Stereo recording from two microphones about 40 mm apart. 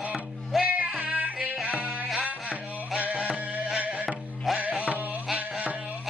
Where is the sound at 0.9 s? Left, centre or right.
Right.